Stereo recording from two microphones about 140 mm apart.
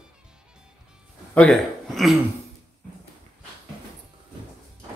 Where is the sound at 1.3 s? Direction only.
5° left (ahead or behind).